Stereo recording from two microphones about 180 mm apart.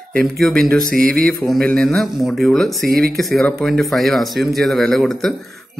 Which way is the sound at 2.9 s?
55° right (ahead or behind).